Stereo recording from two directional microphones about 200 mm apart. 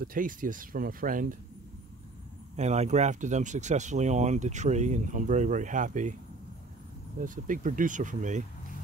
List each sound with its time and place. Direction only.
0.0 s speech: 45° right (ahead or behind)
2.5 s speech: 35° right (ahead or behind)
7.2 s speech: 40° right (ahead or behind)